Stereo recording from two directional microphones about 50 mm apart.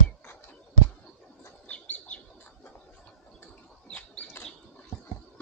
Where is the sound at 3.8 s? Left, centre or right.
Left.